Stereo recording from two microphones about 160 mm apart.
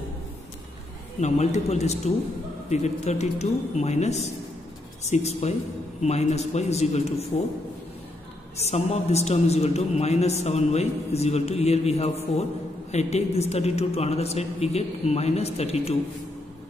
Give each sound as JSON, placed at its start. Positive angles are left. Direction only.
{"t": 1.2, "sound": "speech", "side_deg": 45}
{"t": 8.6, "sound": "a man's voice", "side_deg": 45}